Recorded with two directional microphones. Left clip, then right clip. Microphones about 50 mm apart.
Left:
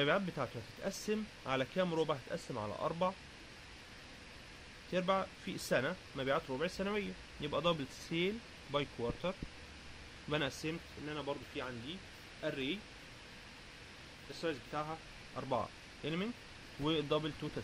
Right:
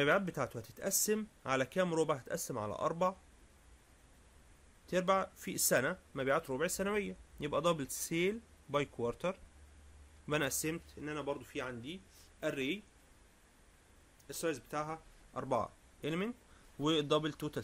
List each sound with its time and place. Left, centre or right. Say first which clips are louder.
0.0 s speech: right 2 dB; right
2.9 s speech: right 2 dB; right
4.9 s speech: right 2 dB; right
7.3 s speech: right 2 dB; right
14.4 s speech: right 2 dB; right
16.8 s a man's voice: right 3 dB; right